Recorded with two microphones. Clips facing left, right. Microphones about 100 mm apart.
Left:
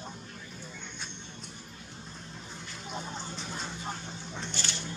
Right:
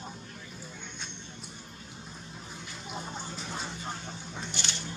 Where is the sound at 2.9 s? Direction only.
5° right (ahead or behind).